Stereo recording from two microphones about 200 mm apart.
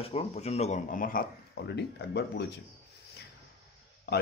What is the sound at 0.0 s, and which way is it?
Speech, 30° left (ahead or behind).